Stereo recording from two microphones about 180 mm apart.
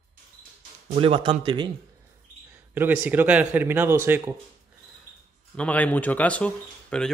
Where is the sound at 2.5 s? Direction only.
10° right (ahead or behind).